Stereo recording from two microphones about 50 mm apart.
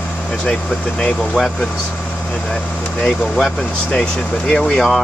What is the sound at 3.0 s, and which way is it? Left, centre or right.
Speech, centre.